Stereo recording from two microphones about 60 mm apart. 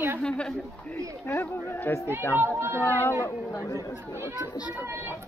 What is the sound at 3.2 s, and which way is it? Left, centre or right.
Speech, left.